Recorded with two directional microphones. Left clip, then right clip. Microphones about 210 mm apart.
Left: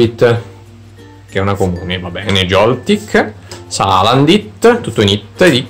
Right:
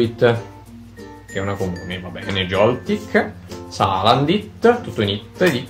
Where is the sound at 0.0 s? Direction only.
30° left (ahead or behind).